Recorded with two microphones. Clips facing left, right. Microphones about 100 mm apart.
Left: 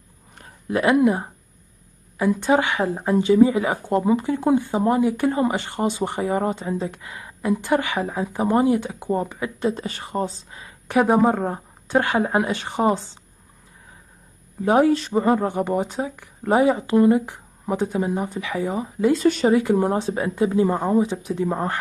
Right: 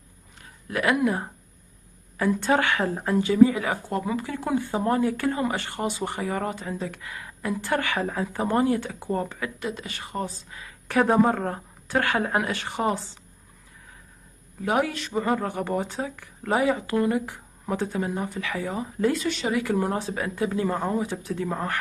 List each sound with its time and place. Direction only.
0.7 s a woman's voice: 25° left (ahead or behind)
9.6 s speech: 35° left (ahead or behind)
14.6 s speech: 30° left (ahead or behind)
19.1 s speech: 40° left (ahead or behind)
19.5 s speech: 25° left (ahead or behind)